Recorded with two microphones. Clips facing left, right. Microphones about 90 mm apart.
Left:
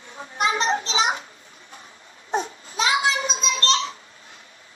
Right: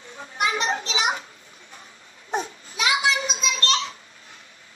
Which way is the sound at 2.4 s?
35° left (ahead or behind).